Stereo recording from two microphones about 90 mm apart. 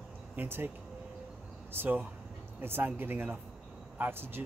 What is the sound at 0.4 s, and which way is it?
Speech, 25° right (ahead or behind).